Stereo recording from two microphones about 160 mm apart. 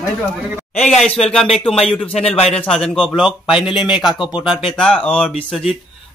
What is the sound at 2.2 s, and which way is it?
Speech, 40° left (ahead or behind).